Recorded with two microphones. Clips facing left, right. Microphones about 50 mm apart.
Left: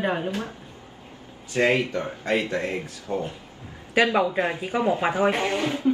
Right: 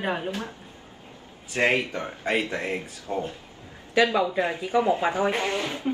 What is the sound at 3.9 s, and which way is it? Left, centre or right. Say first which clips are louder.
Speech: left 1 dB; left.